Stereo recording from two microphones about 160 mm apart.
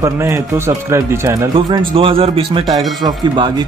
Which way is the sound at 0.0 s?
20° right (ahead or behind).